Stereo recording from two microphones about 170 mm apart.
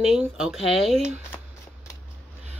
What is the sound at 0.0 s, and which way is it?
Speech, 5° right (ahead or behind).